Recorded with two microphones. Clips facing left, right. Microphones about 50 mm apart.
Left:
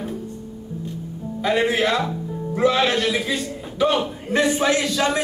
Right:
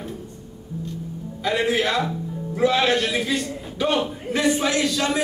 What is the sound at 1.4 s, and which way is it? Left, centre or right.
Speech, centre.